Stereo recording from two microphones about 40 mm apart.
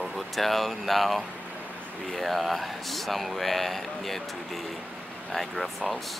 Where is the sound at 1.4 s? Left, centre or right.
Right.